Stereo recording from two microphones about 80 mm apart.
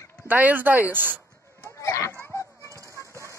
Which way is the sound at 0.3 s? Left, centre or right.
Right.